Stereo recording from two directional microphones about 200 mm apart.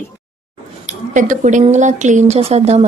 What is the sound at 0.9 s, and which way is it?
A woman's voice, 40° right (ahead or behind).